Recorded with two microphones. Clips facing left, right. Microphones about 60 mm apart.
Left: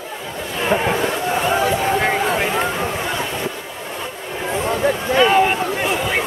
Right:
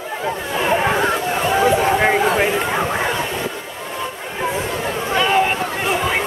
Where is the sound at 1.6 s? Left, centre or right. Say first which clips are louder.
Right 3 dB; centre.